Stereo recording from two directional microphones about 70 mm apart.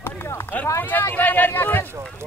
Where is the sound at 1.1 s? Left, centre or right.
Left.